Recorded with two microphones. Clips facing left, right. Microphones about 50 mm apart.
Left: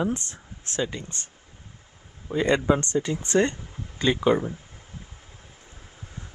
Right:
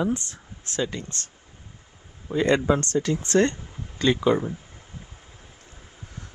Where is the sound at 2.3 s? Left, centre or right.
Centre.